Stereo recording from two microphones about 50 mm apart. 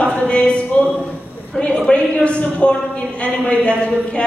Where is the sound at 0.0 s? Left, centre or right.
Left.